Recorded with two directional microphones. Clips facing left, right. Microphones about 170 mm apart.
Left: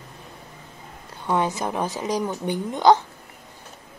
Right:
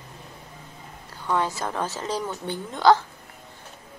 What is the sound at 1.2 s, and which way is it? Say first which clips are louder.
Speech: left 2 dB; 20° left (ahead or behind).